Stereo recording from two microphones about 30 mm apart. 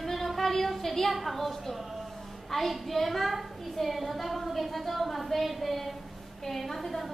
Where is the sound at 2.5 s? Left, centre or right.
Centre.